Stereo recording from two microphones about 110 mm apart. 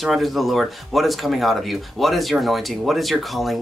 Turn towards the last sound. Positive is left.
turn(degrees=0)  # may be behind; listen again after turning